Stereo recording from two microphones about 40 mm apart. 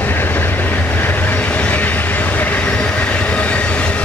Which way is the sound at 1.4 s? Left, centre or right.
Left.